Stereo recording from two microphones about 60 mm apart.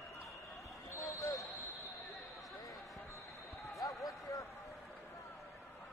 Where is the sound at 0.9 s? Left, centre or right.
Left.